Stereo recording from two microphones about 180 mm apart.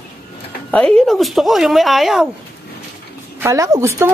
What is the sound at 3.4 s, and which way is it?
Speech, 15° right (ahead or behind).